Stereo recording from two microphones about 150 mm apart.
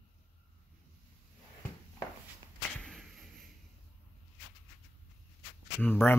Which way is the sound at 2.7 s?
5° left (ahead or behind).